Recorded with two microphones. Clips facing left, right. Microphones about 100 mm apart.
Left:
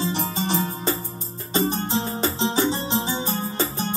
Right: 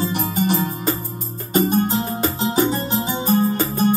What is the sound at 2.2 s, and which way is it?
Music, 25° left (ahead or behind).